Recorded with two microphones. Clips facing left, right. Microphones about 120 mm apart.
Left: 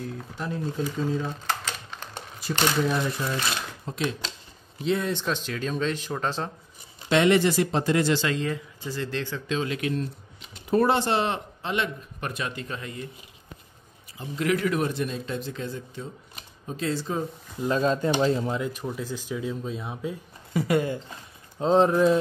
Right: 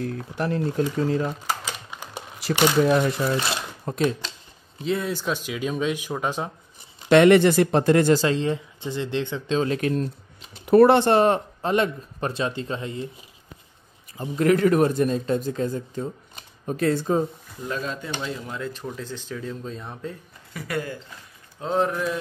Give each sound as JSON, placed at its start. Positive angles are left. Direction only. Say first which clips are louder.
{"t": 0.0, "sound": "speech", "louder": "right 6 dB", "side_deg": -70}
{"t": 1.5, "sound": "crumpling", "louder": "right 1 dB", "side_deg": -10}
{"t": 2.9, "sound": "speech", "louder": "right 6 dB", "side_deg": -65}
{"t": 3.8, "sound": "speech", "louder": "right 7 dB", "side_deg": -50}
{"t": 4.8, "sound": "speech", "louder": "even", "side_deg": 0}
{"t": 7.1, "sound": "speech", "louder": "right 6 dB", "side_deg": -60}
{"t": 9.6, "sound": "speech", "louder": "right 5 dB", "side_deg": -40}
{"t": 10.6, "sound": "speech", "louder": "right 7 dB", "side_deg": -70}
{"t": 14.1, "sound": "a man's voice", "louder": "right 6 dB", "side_deg": -45}
{"t": 16.6, "sound": "speech", "louder": "right 6 dB", "side_deg": -55}
{"t": 17.6, "sound": "speech", "louder": "left 6 dB", "side_deg": 30}
{"t": 18.5, "sound": "speech", "louder": "left 3 dB", "side_deg": 15}
{"t": 20.5, "sound": "speech", "louder": "left 6 dB", "side_deg": 25}